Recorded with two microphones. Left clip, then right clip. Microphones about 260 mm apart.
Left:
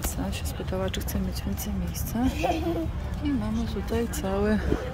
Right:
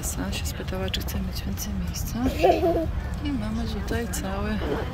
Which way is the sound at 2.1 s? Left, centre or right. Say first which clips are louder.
Right 6 dB; centre.